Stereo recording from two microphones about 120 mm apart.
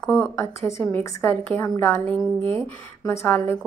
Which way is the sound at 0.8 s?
15° left (ahead or behind).